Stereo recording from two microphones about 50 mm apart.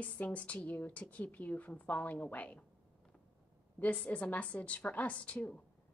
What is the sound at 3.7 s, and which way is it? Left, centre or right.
A woman's voice, left.